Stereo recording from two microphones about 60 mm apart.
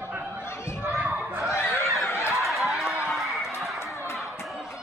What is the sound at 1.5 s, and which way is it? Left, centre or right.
Snicker, left.